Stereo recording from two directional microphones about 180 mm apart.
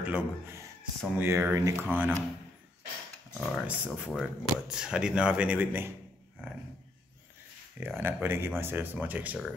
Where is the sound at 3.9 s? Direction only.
5° right (ahead or behind).